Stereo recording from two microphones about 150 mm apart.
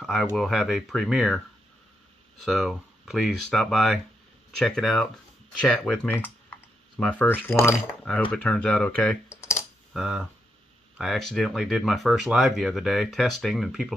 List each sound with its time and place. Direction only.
0.0 s speech: 5° left (ahead or behind)
2.4 s speech: centre (ahead or behind)
9.3 s typing: 20° left (ahead or behind)
9.9 s speech: 5° right (ahead or behind)